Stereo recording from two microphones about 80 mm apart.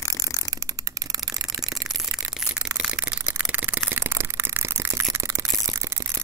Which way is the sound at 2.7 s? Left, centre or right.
Centre.